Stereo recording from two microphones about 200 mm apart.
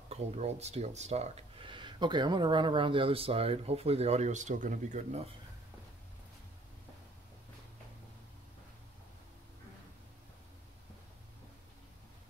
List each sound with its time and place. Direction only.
0.1 s speech: 35° right (ahead or behind)